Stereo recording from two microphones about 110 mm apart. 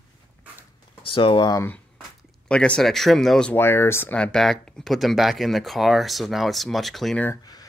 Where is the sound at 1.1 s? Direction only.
50° left (ahead or behind).